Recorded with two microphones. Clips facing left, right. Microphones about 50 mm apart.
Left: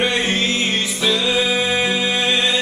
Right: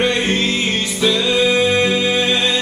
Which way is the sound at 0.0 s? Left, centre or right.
Centre.